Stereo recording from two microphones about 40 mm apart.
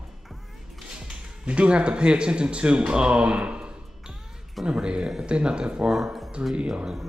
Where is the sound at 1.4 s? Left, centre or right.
Right.